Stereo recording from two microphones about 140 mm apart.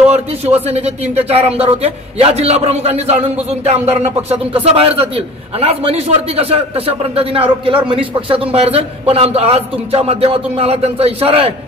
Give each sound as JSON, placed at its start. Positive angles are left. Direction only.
{"t": 0.1, "sound": "a man's voice", "side_deg": -45}